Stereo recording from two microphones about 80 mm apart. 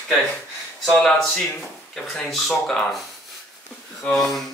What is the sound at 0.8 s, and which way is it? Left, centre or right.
Speech, centre.